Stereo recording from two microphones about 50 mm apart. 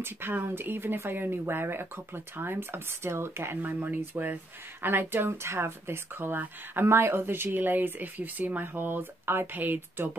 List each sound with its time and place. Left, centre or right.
0.0 s speech: right
3.6 s speech: right
6.3 s speech: right
6.9 s speech: right